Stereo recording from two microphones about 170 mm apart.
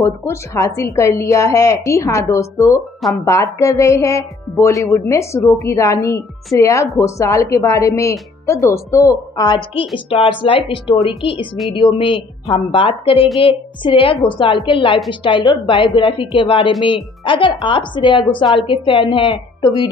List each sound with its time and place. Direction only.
0.0 s a woman's voice: 15° left (ahead or behind)
3.0 s speech: centre (ahead or behind)
3.5 s a woman's voice: 15° left (ahead or behind)
10.0 s a woman's voice: 30° left (ahead or behind)